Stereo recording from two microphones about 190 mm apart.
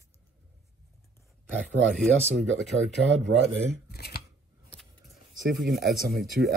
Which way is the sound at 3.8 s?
55° left (ahead or behind).